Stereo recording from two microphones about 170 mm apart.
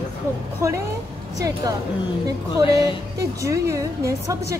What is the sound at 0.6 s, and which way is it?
Speech, 15° right (ahead or behind).